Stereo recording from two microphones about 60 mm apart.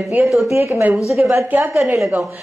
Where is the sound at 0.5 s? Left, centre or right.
Right.